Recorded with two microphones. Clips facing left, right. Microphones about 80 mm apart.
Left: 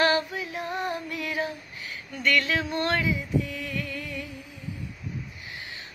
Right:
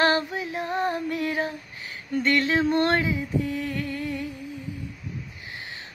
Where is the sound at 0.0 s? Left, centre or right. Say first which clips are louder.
Right 1 dB; right.